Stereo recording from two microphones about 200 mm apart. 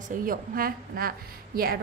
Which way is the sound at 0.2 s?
45° right (ahead or behind).